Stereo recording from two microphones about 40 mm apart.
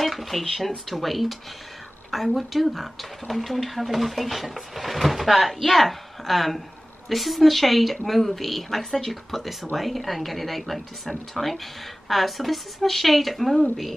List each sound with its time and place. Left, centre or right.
0.0 s speech: centre